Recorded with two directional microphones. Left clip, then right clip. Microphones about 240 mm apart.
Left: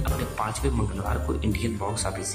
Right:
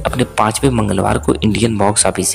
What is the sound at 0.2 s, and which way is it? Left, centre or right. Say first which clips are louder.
Speech: right 15 dB; right.